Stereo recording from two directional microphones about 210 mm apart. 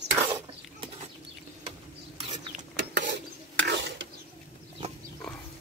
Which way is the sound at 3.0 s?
55° right (ahead or behind).